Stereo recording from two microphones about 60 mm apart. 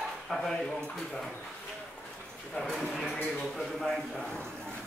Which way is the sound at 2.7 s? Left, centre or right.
Centre.